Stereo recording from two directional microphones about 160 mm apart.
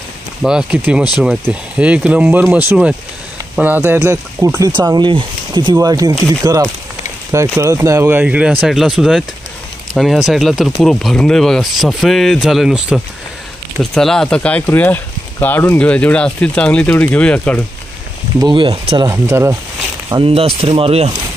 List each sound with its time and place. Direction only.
0.4 s speech: 5° right (ahead or behind)
18.4 s speech: 30° right (ahead or behind)
19.0 s speech: 15° right (ahead or behind)
20.2 s speech: 35° right (ahead or behind)